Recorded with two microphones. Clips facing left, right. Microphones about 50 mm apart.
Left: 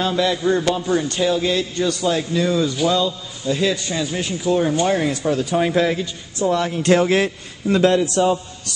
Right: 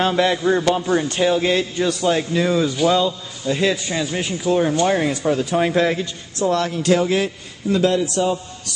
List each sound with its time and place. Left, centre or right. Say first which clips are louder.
0.0 s a man's voice: right 2 dB; right
0.4 s a man's voice: right 1 dB; right
1.8 s a man's voice: right 1 dB; centre
2.4 s a man's voice: right 1 dB; centre
6.8 s a man's voice: left 3 dB; left